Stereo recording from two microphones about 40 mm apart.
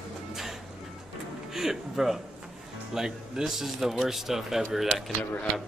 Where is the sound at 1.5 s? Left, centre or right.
Centre.